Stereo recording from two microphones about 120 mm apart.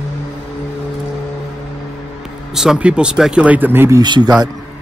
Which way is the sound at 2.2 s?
5° right (ahead or behind).